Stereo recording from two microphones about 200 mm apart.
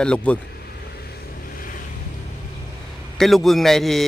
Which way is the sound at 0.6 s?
50° left (ahead or behind).